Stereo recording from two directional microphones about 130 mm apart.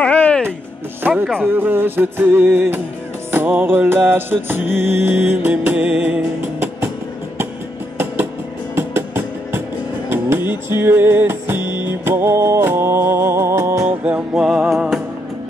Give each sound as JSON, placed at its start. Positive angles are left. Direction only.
{"t": 0.0, "sound": "music", "side_deg": 10}
{"t": 1.0, "sound": "speech", "side_deg": -15}
{"t": 1.4, "sound": "music", "side_deg": -15}
{"t": 8.7, "sound": "music", "side_deg": -20}
{"t": 11.6, "sound": "music", "side_deg": 35}
{"t": 11.9, "sound": "music", "side_deg": -15}
{"t": 14.0, "sound": "music", "side_deg": -10}